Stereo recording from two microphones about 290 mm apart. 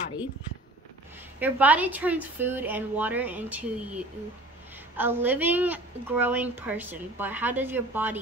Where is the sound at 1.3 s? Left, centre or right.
Centre.